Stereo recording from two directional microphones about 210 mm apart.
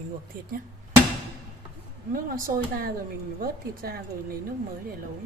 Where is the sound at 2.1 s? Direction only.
45° right (ahead or behind).